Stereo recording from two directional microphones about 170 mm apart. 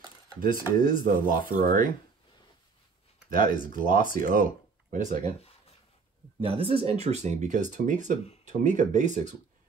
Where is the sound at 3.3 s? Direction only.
55° right (ahead or behind).